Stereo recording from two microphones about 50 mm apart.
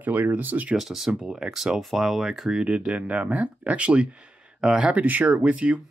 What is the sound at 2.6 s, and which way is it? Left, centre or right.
Speech, right.